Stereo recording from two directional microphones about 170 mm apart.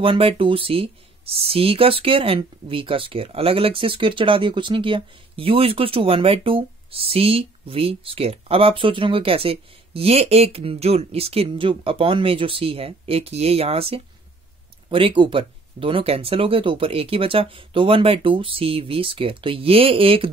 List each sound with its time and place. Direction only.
0.0 s speech: 30° right (ahead or behind)